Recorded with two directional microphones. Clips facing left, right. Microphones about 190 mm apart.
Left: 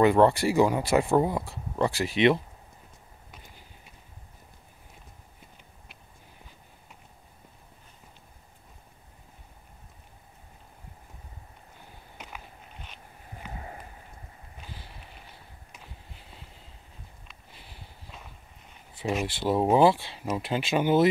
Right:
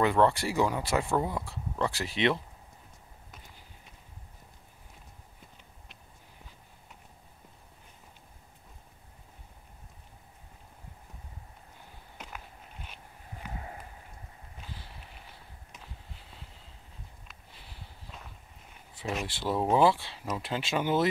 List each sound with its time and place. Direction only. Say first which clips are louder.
0.0 s speech: left 5 dB; 10° left (ahead or behind)
19.2 s speech: left 5 dB; 20° left (ahead or behind)